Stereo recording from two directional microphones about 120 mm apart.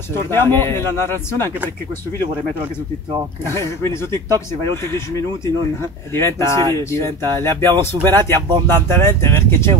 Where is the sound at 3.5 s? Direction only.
20° left (ahead or behind).